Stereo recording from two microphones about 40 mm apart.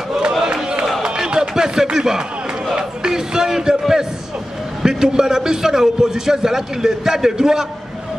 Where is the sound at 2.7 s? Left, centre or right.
Centre.